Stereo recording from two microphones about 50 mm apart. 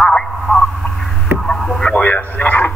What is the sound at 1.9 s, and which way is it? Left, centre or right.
Radio, left.